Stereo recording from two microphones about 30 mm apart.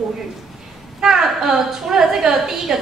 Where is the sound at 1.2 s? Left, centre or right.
Centre.